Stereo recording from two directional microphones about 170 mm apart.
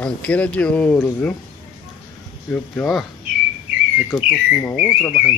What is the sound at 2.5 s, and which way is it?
Speech, 5° left (ahead or behind).